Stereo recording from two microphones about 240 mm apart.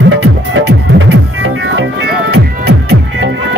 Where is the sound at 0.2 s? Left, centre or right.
Right.